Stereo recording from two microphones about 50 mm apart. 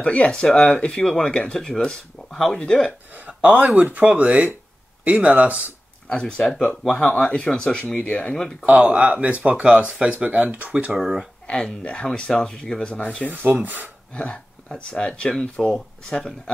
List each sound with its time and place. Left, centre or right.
0.0 s speech: centre
3.3 s a sound: centre
3.7 s speech: right
6.0 s speech: centre
7.3 s speech: centre
7.9 s speech: left
8.7 s speech: centre
9.0 s speech: right
10.9 s speech: centre
11.5 s speech: left
11.9 s speech: centre
13.5 s speech: right
14.1 s speech: left